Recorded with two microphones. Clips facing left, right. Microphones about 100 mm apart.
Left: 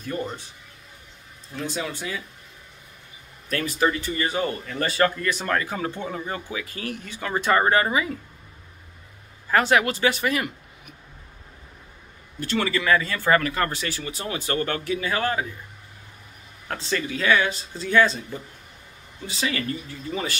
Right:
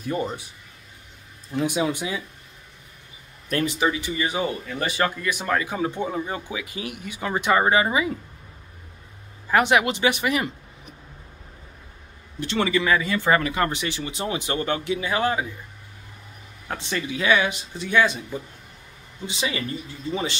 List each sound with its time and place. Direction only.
1.5 s speech: 15° right (ahead or behind)
3.4 s speech: 20° right (ahead or behind)
9.5 s speech: 15° right (ahead or behind)
12.4 s speech: 20° right (ahead or behind)
16.6 s speech: 20° right (ahead or behind)
19.2 s speech: 20° right (ahead or behind)